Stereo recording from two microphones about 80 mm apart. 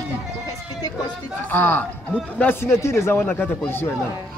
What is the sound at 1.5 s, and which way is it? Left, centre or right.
Speech, left.